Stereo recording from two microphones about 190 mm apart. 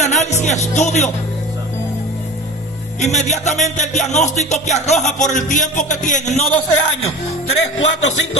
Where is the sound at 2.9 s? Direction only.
40° left (ahead or behind).